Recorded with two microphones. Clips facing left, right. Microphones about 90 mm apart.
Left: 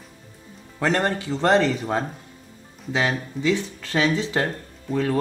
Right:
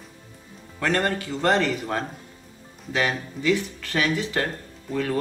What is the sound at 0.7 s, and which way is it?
Speech, 20° left (ahead or behind).